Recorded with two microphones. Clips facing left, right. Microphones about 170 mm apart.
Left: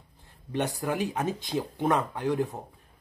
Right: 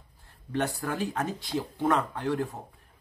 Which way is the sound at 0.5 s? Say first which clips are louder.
Left 1 dB; 15° left (ahead or behind).